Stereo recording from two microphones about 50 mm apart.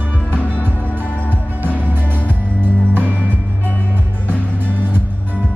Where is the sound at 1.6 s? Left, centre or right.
Right.